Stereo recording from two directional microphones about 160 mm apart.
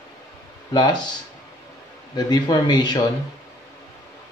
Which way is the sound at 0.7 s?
25° left (ahead or behind).